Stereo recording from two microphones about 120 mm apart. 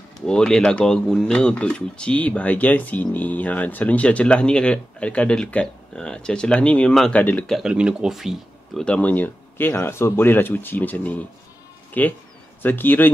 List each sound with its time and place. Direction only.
0.3 s speech: 5° left (ahead or behind)
7.5 s speech: 5° right (ahead or behind)
8.8 s speech: 10° left (ahead or behind)